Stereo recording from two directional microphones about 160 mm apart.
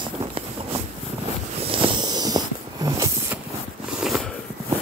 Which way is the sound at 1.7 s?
35° right (ahead or behind).